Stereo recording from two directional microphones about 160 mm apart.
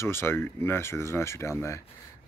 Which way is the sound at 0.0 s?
15° left (ahead or behind).